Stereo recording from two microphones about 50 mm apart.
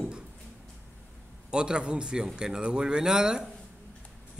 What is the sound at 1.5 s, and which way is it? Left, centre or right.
Speech, centre.